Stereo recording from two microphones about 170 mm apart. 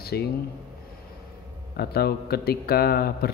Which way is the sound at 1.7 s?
65° left (ahead or behind).